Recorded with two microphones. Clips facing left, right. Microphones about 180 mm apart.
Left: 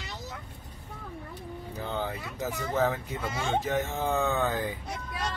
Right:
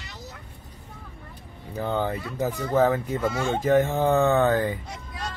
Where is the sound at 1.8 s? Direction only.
55° right (ahead or behind).